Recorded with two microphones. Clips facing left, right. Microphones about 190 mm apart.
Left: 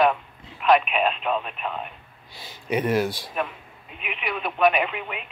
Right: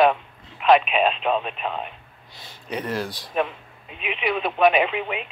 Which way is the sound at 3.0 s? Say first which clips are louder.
Right 3 dB; 15° right (ahead or behind).